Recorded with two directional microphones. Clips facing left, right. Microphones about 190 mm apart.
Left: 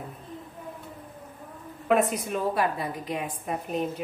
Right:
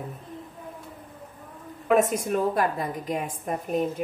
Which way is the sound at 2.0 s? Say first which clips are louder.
Right 3 dB; 45° right (ahead or behind).